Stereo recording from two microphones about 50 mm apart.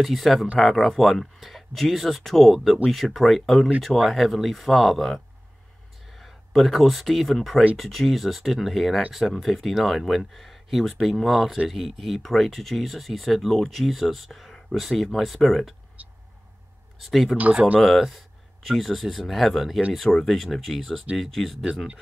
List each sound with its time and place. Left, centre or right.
0.0 s speech: centre
16.0 s vehicle: right
17.1 s speech: centre
17.4 s speech: right
17.7 s speech: centre